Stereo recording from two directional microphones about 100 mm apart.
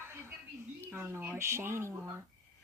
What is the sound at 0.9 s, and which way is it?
Speech, 20° right (ahead or behind).